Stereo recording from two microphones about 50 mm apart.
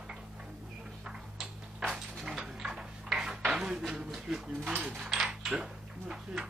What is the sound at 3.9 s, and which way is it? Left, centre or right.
Speech, centre.